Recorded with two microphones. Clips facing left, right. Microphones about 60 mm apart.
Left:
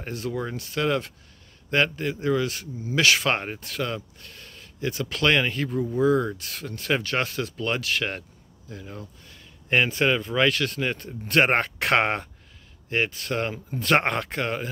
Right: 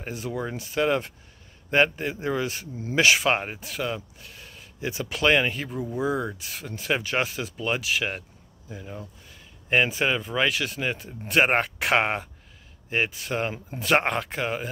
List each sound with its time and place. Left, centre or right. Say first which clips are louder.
0.0 s a man's voice: left 1 dB; centre
3.3 s speech: right 1 dB; centre